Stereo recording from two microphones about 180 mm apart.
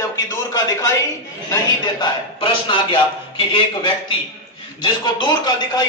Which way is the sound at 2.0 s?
30° left (ahead or behind).